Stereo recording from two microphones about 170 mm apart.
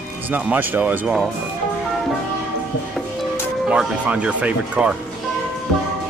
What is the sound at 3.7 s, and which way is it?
Speech, 5° right (ahead or behind).